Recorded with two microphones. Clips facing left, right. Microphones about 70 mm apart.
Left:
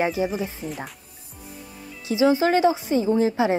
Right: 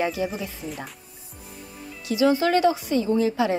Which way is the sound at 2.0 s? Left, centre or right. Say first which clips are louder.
Left 1 dB; left.